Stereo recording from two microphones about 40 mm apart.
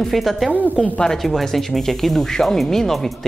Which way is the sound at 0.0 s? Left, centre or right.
Centre.